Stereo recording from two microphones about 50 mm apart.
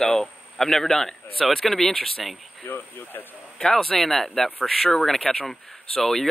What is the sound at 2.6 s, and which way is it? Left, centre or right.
Speech, left.